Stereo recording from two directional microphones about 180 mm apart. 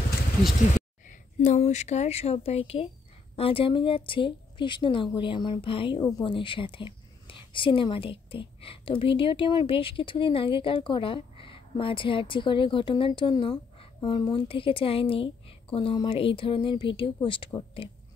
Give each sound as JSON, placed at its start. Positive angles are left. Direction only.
{"t": 1.0, "sound": "a woman's voice", "side_deg": 45}